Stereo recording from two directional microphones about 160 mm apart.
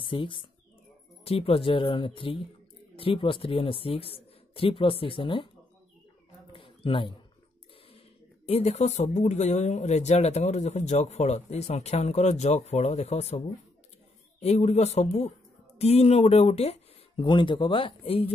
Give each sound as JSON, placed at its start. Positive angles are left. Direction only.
{"t": 0.1, "sound": "speech", "side_deg": 30}
{"t": 6.5, "sound": "a sound", "side_deg": 35}
{"t": 8.5, "sound": "speech", "side_deg": 40}
{"t": 14.4, "sound": "speech", "side_deg": 40}